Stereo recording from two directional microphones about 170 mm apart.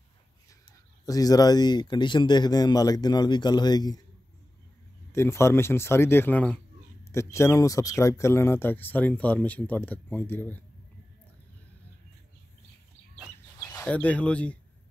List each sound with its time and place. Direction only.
1.0 s speech: 20° left (ahead or behind)
5.1 s speech: 15° left (ahead or behind)
13.6 s speech: 10° left (ahead or behind)